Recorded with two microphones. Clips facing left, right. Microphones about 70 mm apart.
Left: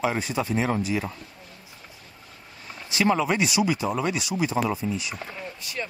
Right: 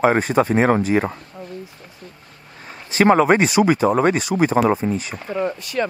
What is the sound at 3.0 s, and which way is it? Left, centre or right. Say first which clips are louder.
Speech: right 9 dB; right.